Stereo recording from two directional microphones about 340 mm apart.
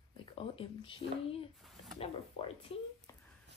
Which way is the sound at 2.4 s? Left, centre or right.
Centre.